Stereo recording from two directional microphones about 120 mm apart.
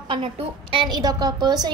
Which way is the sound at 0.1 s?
45° right (ahead or behind).